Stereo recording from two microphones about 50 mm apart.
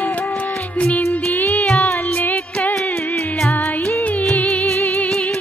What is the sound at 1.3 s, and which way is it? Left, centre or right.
Music, left.